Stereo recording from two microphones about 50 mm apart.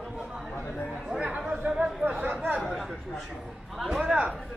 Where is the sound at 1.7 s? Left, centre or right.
Centre.